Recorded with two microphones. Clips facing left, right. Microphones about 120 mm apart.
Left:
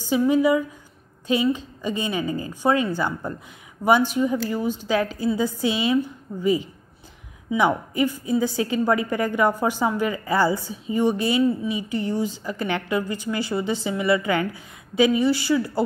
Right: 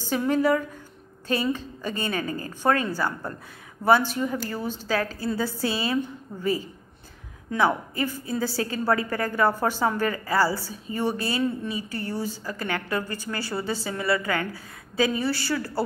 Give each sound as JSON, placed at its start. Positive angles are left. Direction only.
{"t": 0.1, "sound": "a woman's voice", "side_deg": 10}